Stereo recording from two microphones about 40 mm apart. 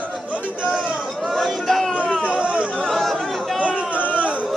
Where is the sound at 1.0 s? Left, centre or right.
Centre.